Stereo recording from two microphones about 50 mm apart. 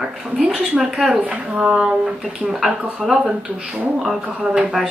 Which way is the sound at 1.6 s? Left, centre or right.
Centre.